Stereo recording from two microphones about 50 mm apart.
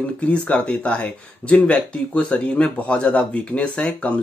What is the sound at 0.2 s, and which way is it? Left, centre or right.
Speech, left.